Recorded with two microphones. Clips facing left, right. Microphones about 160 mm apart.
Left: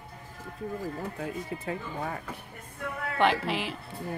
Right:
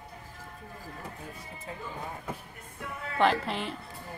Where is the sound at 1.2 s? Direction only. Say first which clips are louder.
Left 9 dB; 75° left (ahead or behind).